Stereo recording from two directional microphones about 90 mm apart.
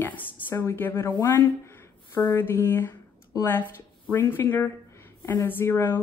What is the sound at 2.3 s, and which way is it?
Speech, 25° left (ahead or behind).